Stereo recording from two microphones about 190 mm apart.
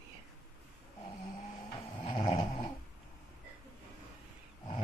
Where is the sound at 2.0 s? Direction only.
30° left (ahead or behind).